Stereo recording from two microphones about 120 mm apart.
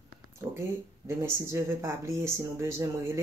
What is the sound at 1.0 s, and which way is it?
Speech, 20° right (ahead or behind).